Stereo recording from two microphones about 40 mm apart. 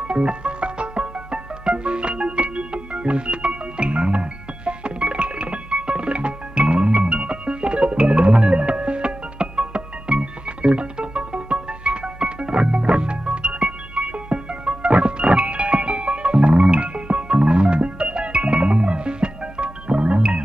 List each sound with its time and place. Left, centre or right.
0.0 s music: right